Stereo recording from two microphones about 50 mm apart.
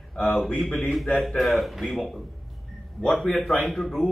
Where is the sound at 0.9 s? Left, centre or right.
Centre.